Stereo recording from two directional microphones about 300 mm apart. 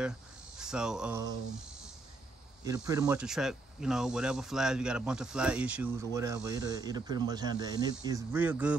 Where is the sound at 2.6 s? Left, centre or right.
Centre.